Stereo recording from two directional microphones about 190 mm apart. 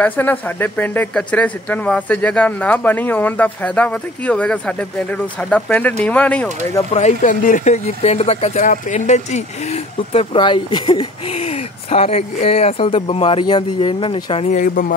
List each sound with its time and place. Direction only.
0.0 s speech: 10° left (ahead or behind)
6.9 s speech: 35° left (ahead or behind)
14.5 s speech: 45° left (ahead or behind)